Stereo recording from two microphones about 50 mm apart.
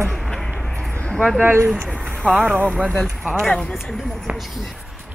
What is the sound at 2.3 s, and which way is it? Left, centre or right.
Speech, right.